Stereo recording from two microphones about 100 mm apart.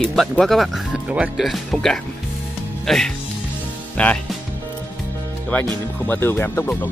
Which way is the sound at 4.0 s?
15° left (ahead or behind).